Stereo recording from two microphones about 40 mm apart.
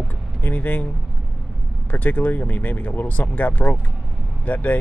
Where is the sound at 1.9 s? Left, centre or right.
Left.